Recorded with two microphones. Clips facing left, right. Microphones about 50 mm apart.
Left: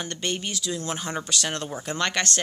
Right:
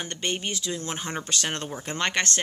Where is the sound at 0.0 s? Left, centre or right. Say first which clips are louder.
Even; right.